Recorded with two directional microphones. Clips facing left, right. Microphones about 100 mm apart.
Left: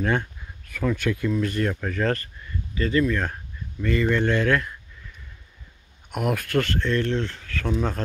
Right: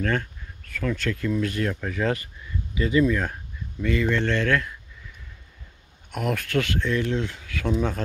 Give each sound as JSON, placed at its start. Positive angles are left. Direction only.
{"t": 0.0, "sound": "speech", "side_deg": 20}
{"t": 6.1, "sound": "speech", "side_deg": 5}